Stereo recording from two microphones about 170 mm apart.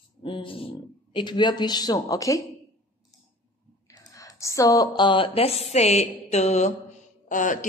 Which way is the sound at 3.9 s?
20° left (ahead or behind).